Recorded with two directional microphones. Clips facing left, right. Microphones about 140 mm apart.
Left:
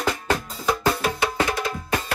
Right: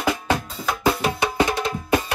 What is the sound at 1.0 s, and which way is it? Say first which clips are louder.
Music: right 2 dB; 20° right (ahead or behind).